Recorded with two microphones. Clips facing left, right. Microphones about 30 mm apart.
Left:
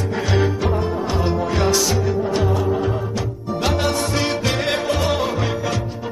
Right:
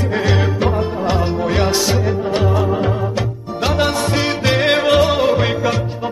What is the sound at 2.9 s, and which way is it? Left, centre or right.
Music, right.